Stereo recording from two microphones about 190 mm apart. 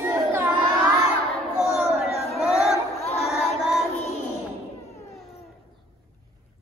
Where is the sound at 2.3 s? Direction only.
Centre (ahead or behind).